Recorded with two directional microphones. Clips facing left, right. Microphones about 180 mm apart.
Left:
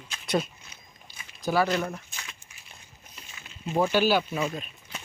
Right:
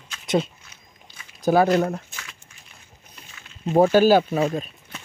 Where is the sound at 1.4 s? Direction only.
45° right (ahead or behind).